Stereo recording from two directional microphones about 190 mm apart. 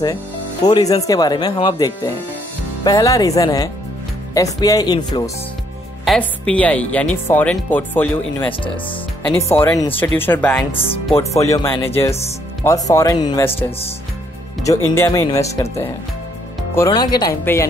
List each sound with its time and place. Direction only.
0.7 s speech: 20° left (ahead or behind)
6.0 s speech: 5° left (ahead or behind)
10.7 s speech: 30° left (ahead or behind)
11.1 s speech: 15° left (ahead or behind)
13.7 s speech: 30° left (ahead or behind)
14.6 s speech: 15° left (ahead or behind)